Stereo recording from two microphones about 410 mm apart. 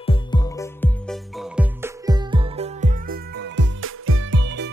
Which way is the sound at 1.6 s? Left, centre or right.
Centre.